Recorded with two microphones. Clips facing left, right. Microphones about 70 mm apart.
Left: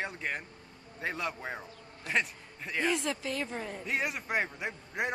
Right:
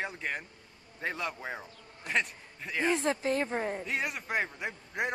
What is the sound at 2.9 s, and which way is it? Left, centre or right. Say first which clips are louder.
Speech: right 5 dB; right.